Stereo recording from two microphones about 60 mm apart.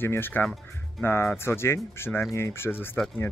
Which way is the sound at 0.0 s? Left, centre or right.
Left.